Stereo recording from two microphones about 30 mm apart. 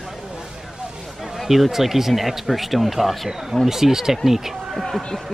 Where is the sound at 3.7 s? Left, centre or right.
Centre.